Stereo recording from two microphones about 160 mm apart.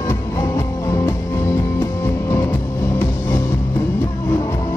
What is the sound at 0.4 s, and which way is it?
Music, 20° left (ahead or behind).